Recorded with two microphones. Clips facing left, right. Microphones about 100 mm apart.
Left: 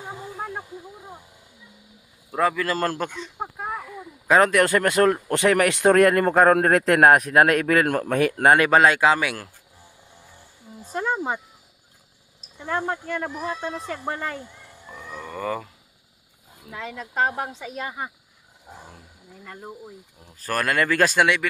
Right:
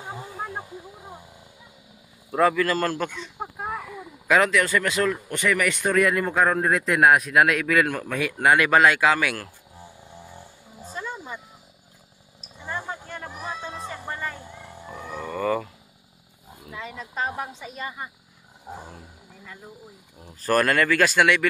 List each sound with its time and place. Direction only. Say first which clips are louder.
2.5 s speech: right 1 dB; 20° left (ahead or behind)
3.5 s a sound: right 1 dB; 5° right (ahead or behind)
4.5 s speech: left 3 dB; 55° left (ahead or behind)
5.3 s a man's voice: left 5 dB; 70° left (ahead or behind); by 9.5 s 20° left (ahead or behind)
10.9 s music: left 9 dB; 75° left (ahead or behind)
12.6 s speech: left 6 dB; 80° left
15.1 s speech: right 3 dB; centre (ahead or behind)
16.7 s a woman's voice: left 5 dB; 75° left (ahead or behind)
19.4 s speech: left 4 dB; 60° left (ahead or behind)
20.6 s speech: right 1 dB; 15° left (ahead or behind)
20.9 s speech: left 3 dB; 30° left (ahead or behind)